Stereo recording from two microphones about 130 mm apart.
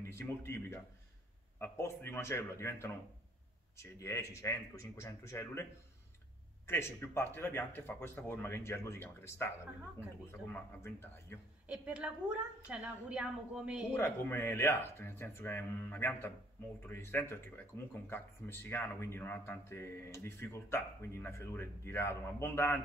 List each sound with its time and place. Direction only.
0.0 s speech: 20° left (ahead or behind)
6.7 s speech: 20° left (ahead or behind)
10.5 s speech: 20° left (ahead or behind)
11.6 s a woman's voice: 10° right (ahead or behind)
13.9 s speech: 20° left (ahead or behind)